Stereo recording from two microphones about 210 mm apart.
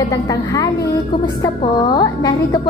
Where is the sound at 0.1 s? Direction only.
15° left (ahead or behind).